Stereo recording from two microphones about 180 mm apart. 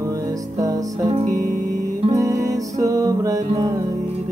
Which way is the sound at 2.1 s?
20° right (ahead or behind).